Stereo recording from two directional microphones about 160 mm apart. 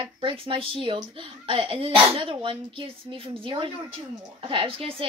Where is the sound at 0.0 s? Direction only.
30° right (ahead or behind).